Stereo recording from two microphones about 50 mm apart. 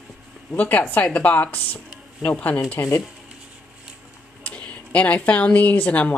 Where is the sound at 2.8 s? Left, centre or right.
Left.